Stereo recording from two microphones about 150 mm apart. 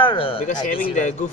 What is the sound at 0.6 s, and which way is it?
Speech, 55° left (ahead or behind).